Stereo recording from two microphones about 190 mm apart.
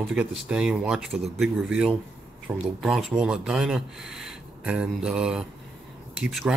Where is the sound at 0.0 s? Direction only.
Centre (ahead or behind).